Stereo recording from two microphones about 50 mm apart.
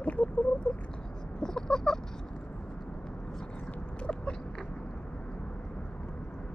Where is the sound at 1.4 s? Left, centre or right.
Centre.